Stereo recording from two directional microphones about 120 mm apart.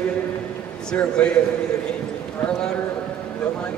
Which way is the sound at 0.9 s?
10° left (ahead or behind).